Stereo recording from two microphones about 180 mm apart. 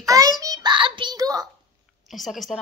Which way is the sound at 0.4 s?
20° right (ahead or behind).